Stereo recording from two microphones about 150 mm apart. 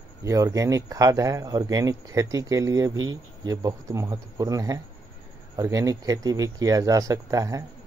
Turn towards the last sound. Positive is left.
turn(degrees=-20)  # may be behind; listen again after turning